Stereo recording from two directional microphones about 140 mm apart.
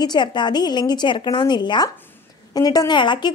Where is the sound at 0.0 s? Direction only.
30° left (ahead or behind).